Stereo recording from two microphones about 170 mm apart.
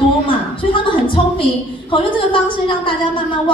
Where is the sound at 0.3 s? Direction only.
30° left (ahead or behind).